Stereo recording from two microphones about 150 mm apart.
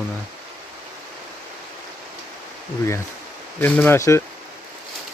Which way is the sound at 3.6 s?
15° left (ahead or behind).